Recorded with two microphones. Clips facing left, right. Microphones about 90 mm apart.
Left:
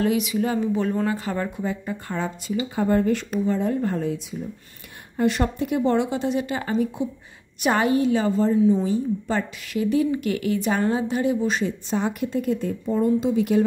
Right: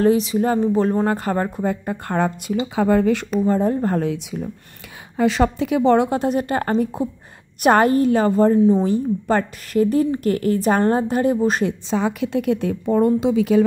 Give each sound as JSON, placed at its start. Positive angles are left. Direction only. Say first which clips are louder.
{"t": 0.0, "sound": "a woman's voice", "louder": "right 5 dB", "side_deg": -35}
{"t": 1.0, "sound": "a woman's voice", "louder": "right 5 dB", "side_deg": -50}
{"t": 2.7, "sound": "speech", "louder": "right 4 dB", "side_deg": -90}
{"t": 3.4, "sound": "a woman's voice", "louder": "right 4 dB", "side_deg": -40}
{"t": 4.0, "sound": "speech", "louder": "right 3 dB", "side_deg": -80}
{"t": 5.1, "sound": "speech", "louder": "right 4 dB", "side_deg": -90}
{"t": 5.9, "sound": "a woman's voice", "louder": "right 4 dB", "side_deg": -50}
{"t": 12.3, "sound": "a woman's voice", "louder": "right 4 dB", "side_deg": -75}